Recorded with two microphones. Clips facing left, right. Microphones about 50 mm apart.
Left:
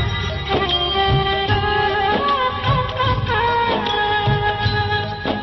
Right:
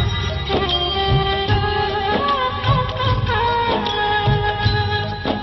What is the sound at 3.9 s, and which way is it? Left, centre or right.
Music, centre.